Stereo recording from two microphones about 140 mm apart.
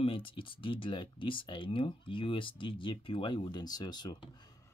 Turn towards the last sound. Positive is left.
turn(degrees=30)  # may be behind; listen again after turning